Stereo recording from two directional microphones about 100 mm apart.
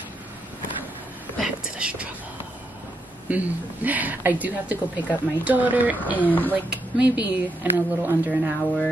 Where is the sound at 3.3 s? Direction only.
15° right (ahead or behind).